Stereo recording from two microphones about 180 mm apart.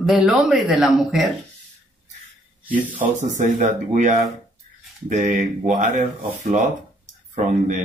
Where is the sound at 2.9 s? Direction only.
45° right (ahead or behind).